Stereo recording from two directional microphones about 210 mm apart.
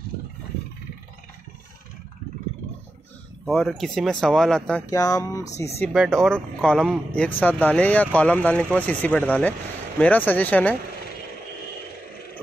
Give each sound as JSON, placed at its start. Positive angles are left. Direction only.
{"t": 3.4, "sound": "speech", "side_deg": 0}
{"t": 4.9, "sound": "speech", "side_deg": 15}
{"t": 5.8, "sound": "speech", "side_deg": 0}